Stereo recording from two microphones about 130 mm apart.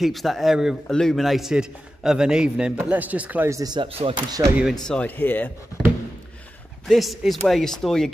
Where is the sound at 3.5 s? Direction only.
30° right (ahead or behind).